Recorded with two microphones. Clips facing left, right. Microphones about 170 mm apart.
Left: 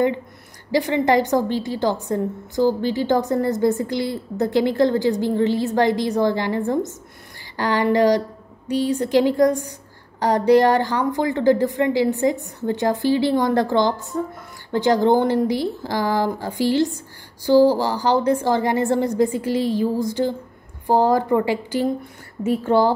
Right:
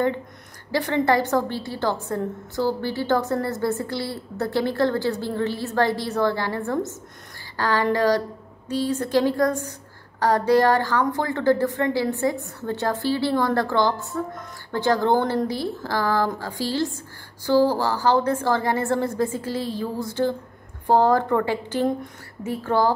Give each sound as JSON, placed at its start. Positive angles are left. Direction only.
{"t": 0.7, "sound": "a woman's voice", "side_deg": 15}